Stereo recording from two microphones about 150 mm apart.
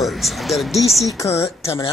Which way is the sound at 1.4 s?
40° left (ahead or behind).